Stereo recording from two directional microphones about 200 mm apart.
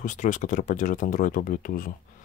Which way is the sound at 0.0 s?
40° left (ahead or behind).